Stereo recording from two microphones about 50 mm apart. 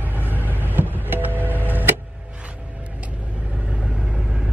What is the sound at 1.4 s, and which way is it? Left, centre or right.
Music, right.